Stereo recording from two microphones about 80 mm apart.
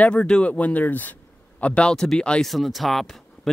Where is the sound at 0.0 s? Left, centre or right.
Centre.